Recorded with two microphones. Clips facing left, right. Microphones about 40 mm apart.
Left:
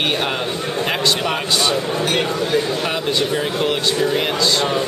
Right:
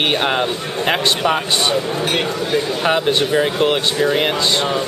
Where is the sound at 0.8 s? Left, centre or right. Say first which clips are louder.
Right 4 dB; centre.